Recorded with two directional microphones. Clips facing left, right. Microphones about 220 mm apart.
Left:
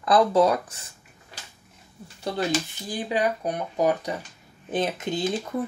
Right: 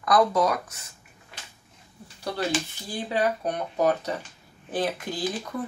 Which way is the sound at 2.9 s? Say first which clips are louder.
Left 1 dB; 15° left (ahead or behind).